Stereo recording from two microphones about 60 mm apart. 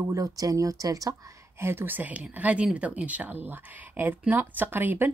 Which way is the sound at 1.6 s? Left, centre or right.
Right.